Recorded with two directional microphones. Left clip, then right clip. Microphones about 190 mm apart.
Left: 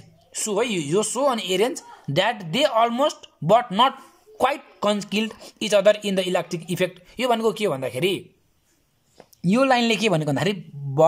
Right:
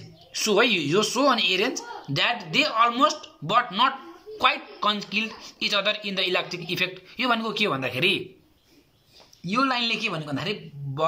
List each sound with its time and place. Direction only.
0.3 s a woman's voice: 40° left (ahead or behind)
9.4 s a woman's voice: 50° left (ahead or behind)